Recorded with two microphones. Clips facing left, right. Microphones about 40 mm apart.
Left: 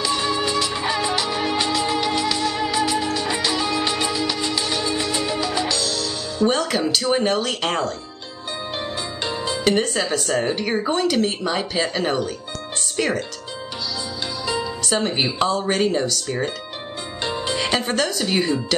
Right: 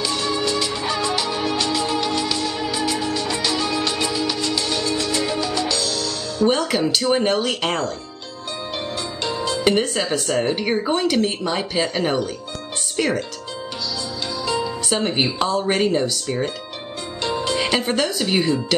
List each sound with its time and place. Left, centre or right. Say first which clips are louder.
0.0 s music: left 1 dB; centre
5.2 s music: right 1 dB; centre
5.7 s speech: right 1 dB; centre
9.2 s music: right 2 dB; centre
9.7 s speech: even; centre
14.4 s music: right 2 dB; centre
15.2 s speech: left 1 dB; centre
15.5 s speech: right 1 dB; centre
17.2 s music: right 2 dB; centre
17.6 s speech: even; centre